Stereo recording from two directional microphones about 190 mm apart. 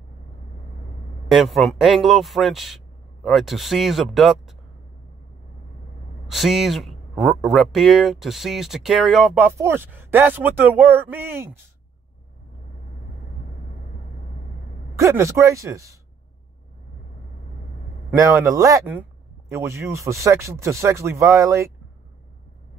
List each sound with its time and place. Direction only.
1.3 s speech: centre (ahead or behind)
6.2 s speech: centre (ahead or behind)
15.0 s speech: 15° right (ahead or behind)
18.1 s speech: 15° right (ahead or behind)